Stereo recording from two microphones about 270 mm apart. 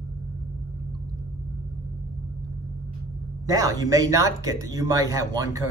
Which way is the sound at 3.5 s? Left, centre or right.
Centre.